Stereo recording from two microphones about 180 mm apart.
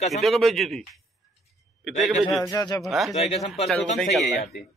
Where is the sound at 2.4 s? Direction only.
20° left (ahead or behind).